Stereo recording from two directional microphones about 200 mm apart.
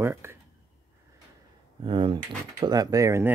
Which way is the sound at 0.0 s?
10° right (ahead or behind).